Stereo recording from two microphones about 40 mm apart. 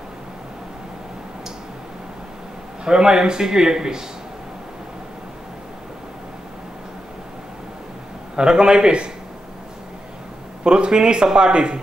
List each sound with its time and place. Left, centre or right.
2.8 s a man's voice: centre
8.4 s speech: right
10.6 s speech: right